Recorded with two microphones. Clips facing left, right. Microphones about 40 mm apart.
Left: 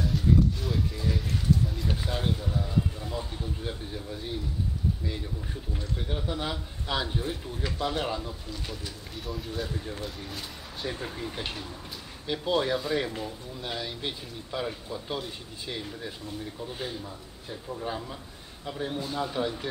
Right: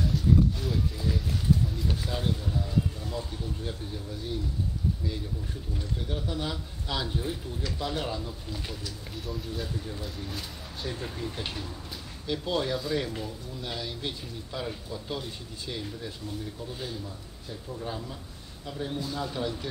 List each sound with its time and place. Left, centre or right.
0.0 s a sound: centre
1.9 s speech: centre
5.9 s speech: left
9.1 s speech: centre
10.0 s a man's voice: centre